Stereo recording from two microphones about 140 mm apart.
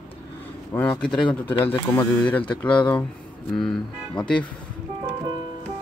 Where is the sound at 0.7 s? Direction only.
15° left (ahead or behind).